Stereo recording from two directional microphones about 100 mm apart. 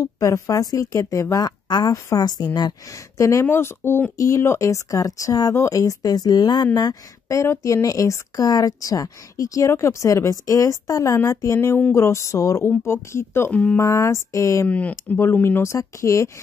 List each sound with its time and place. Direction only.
0.0 s speech: 35° left (ahead or behind)
13.5 s speech: 15° left (ahead or behind)
13.7 s speech: 35° left (ahead or behind)
14.7 s speech: 15° left (ahead or behind); by 16.3 s 30° left (ahead or behind)